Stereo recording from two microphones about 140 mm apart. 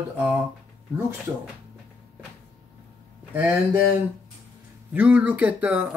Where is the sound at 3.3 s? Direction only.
15° right (ahead or behind).